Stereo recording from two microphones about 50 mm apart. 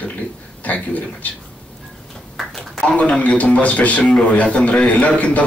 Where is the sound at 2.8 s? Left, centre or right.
Left.